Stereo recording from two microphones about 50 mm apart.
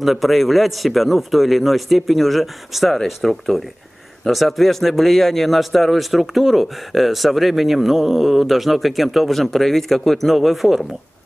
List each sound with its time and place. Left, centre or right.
0.0 s speech: centre